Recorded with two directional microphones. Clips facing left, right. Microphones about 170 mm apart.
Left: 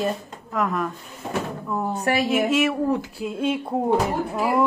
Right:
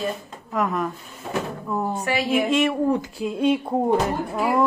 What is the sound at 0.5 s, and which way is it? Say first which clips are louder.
A woman's voice: right 1 dB; centre (ahead or behind).